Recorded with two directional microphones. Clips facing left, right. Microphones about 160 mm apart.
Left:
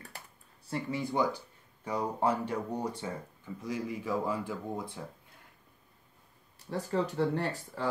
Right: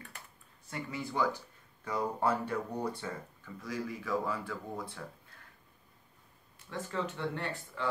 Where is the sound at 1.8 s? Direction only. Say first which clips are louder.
Left 1 dB; 15° left (ahead or behind).